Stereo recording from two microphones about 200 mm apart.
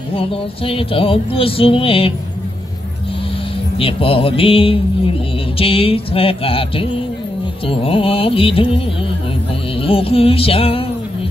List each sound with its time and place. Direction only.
0.1 s speech: 30° left (ahead or behind)
3.7 s speech: 30° left (ahead or behind)